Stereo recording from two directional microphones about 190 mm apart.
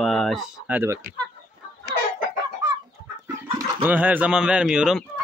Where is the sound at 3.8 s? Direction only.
10° right (ahead or behind).